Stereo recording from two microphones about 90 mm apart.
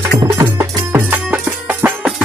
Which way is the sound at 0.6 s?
25° right (ahead or behind).